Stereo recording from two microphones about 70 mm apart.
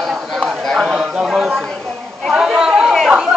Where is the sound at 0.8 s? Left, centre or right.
Centre.